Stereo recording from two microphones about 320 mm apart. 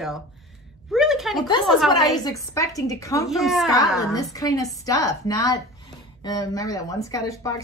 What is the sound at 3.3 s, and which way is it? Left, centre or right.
Speech, centre.